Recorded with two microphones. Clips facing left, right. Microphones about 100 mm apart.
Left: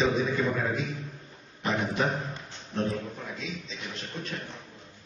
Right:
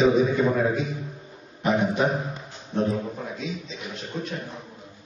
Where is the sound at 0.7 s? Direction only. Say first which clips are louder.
Right 5 dB; 5° right (ahead or behind).